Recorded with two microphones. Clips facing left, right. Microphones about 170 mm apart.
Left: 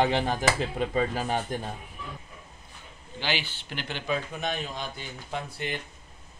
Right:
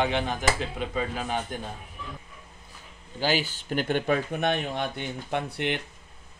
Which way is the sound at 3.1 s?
45° right (ahead or behind).